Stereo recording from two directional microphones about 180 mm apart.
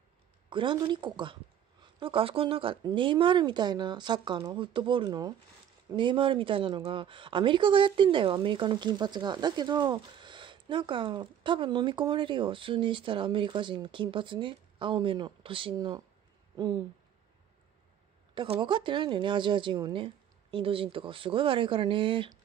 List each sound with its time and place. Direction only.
0.5 s speech: 25° right (ahead or behind)
18.3 s speech: 25° right (ahead or behind)